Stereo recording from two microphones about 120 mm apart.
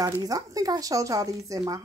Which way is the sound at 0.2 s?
30° right (ahead or behind).